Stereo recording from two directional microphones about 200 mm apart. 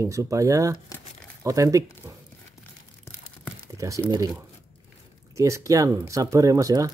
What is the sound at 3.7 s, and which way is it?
Crumpling, 15° right (ahead or behind).